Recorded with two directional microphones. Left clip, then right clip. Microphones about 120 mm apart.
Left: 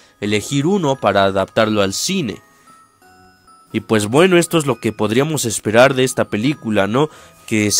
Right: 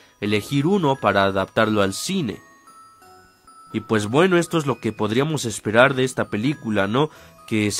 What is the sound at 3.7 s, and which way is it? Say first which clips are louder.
Speech: left 5 dB; 45° left (ahead or behind).